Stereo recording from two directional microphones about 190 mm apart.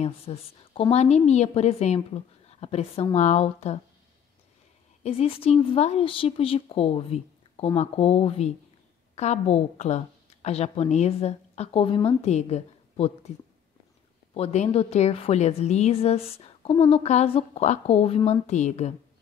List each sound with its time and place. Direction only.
0.0 s a woman's voice: 30° left (ahead or behind)
5.0 s a woman's voice: 30° left (ahead or behind)
14.3 s a woman's voice: 35° left (ahead or behind)